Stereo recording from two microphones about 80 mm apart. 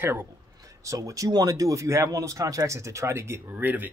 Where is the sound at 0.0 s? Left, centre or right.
Right.